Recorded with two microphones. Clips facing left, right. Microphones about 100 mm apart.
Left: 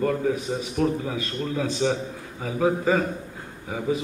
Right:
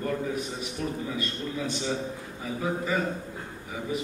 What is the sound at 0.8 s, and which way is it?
Speech, 70° left (ahead or behind).